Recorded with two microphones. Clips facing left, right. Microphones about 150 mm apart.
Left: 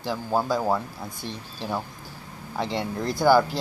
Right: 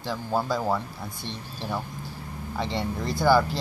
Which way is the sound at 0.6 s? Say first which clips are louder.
Left 2 dB; 15° left (ahead or behind).